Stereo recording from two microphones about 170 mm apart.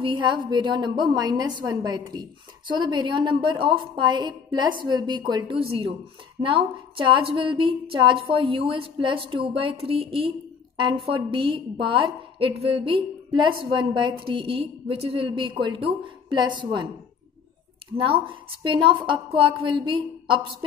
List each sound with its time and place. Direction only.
0.0 s a woman's voice: 30° right (ahead or behind)
17.9 s a woman's voice: 30° right (ahead or behind)